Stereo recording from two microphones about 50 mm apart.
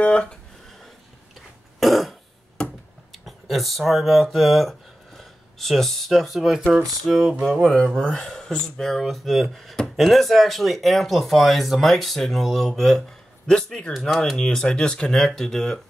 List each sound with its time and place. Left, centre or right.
0.0 s a sound: centre
1.8 s cough: centre
3.1 s speech: centre
7.6 s speech: centre